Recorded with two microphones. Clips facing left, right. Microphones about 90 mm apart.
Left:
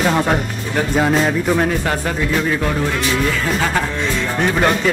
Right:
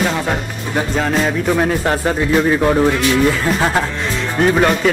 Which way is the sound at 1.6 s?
15° right (ahead or behind).